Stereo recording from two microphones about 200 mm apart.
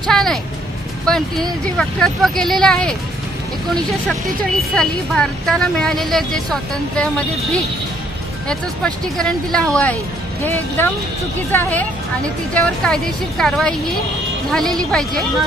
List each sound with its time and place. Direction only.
0.0 s music: centre (ahead or behind)
1.1 s a sound: 5° left (ahead or behind)
1.8 s speech: 5° left (ahead or behind)
4.6 s speech: 5° left (ahead or behind)